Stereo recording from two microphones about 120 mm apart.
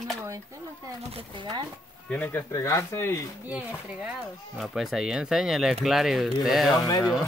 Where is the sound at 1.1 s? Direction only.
50° right (ahead or behind).